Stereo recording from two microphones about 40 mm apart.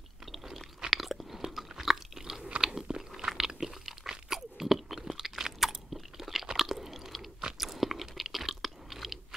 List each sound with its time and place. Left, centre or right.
0.8 s chewing: centre
3.3 s crunch: centre
5.4 s chewing: centre